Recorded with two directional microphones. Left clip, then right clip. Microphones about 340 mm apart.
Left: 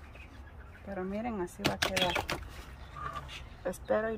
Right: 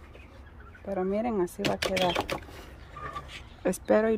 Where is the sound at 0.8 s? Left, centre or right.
Right.